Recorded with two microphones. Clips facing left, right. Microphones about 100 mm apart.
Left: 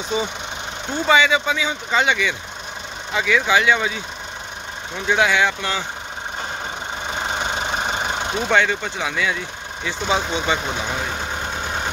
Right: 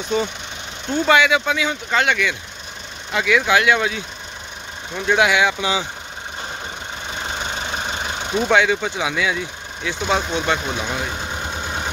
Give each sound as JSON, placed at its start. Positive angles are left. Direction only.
{"t": 0.1, "sound": "speech", "side_deg": 0}
{"t": 7.3, "sound": "vehicle", "side_deg": 30}
{"t": 8.3, "sound": "speech", "side_deg": 0}